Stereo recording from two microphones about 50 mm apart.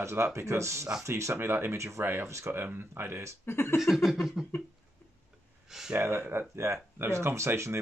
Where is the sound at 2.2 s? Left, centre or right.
Right.